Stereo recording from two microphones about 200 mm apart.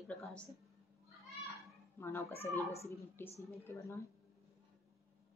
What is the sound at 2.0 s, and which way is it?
Speech, 10° left (ahead or behind).